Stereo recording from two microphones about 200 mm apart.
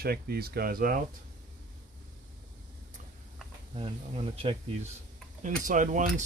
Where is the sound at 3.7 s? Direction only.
25° right (ahead or behind).